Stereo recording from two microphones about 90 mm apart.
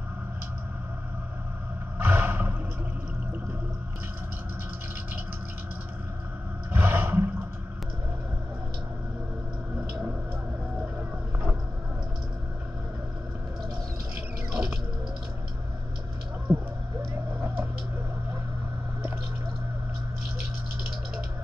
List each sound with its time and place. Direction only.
2.0 s roar: 20° right (ahead or behind)
6.7 s roar: 20° right (ahead or behind)
16.5 s a sound: 15° right (ahead or behind)